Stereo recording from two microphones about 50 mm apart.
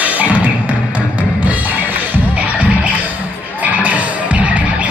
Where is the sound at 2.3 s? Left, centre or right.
Right.